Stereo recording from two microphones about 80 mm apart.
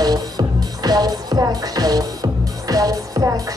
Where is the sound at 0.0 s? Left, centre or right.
Right.